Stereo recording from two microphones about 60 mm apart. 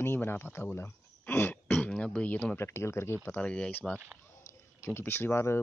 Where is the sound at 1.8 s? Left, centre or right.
Centre.